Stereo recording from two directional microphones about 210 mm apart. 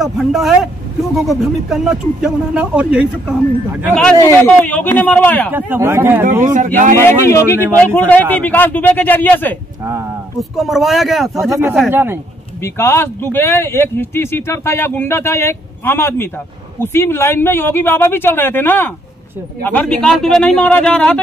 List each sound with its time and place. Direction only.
0.0 s speech: centre (ahead or behind)
3.9 s speech: 5° left (ahead or behind)
5.5 s speech: 10° right (ahead or behind)
6.5 s speech: 40° right (ahead or behind)
7.1 s speech: 10° left (ahead or behind); by 12.2 s 10° right (ahead or behind)
12.6 s speech: 10° left (ahead or behind)